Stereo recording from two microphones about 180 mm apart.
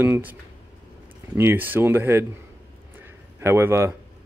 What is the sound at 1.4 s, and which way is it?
Speech, 10° right (ahead or behind).